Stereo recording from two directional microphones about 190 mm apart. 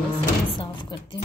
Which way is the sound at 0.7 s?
25° left (ahead or behind).